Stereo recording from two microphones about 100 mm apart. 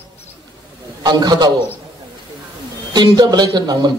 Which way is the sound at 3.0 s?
45° right (ahead or behind).